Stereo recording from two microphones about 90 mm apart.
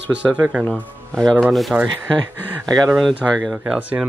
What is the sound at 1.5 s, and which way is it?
Speech, centre (ahead or behind).